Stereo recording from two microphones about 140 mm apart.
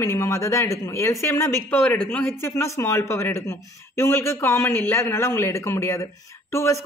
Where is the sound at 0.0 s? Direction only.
20° left (ahead or behind).